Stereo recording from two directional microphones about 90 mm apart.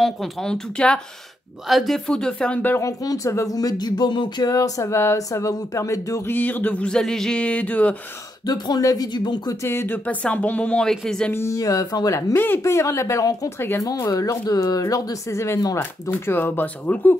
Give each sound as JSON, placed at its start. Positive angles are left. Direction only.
{"t": 0.0, "sound": "speech", "side_deg": 5}
{"t": 2.8, "sound": "speech", "side_deg": 40}
{"t": 6.2, "sound": "speech", "side_deg": 20}
{"t": 8.5, "sound": "speech", "side_deg": 45}
{"t": 9.6, "sound": "speech", "side_deg": 25}
{"t": 11.3, "sound": "speech", "side_deg": 35}